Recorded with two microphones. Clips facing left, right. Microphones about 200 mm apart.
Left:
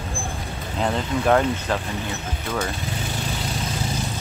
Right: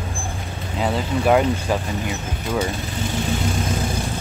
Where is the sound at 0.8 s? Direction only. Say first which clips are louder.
Right 2 dB; 5° right (ahead or behind).